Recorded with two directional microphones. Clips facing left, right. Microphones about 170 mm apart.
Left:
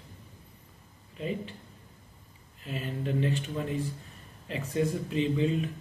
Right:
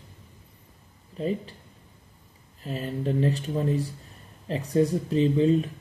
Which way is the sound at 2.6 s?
40° right (ahead or behind).